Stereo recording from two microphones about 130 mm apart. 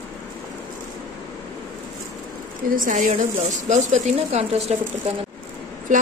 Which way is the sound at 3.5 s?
70° right (ahead or behind).